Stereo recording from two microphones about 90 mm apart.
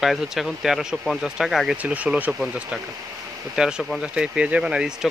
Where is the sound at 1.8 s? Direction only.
15° right (ahead or behind).